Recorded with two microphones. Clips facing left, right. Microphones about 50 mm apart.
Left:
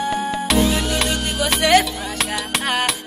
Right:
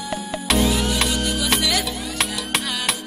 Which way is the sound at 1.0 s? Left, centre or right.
Left.